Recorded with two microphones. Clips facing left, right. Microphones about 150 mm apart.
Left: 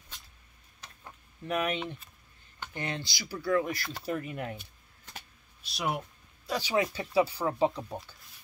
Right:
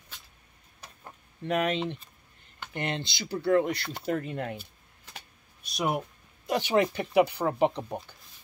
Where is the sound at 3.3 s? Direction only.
25° right (ahead or behind).